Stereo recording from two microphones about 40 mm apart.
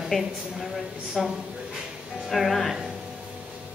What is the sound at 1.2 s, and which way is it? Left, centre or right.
A woman's voice, centre.